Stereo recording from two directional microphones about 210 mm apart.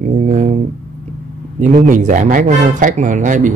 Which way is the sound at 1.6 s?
35° right (ahead or behind).